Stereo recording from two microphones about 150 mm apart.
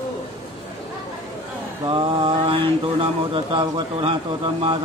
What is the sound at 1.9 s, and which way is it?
Mantra, 40° right (ahead or behind).